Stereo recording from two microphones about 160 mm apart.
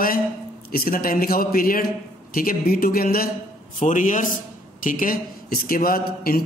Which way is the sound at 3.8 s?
50° left (ahead or behind).